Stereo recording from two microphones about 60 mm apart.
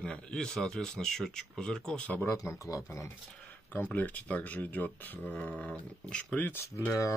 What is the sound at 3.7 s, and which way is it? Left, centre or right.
Speech, left.